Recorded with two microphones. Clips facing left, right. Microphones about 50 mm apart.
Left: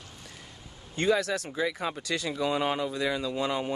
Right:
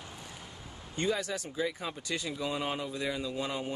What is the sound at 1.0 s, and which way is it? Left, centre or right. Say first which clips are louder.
Speech: left 6 dB; left.